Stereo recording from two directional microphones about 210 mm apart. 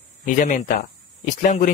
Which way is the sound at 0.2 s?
40° left (ahead or behind).